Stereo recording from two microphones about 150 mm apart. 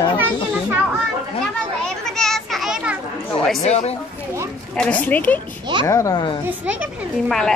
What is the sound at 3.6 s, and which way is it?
Speech, 45° left (ahead or behind).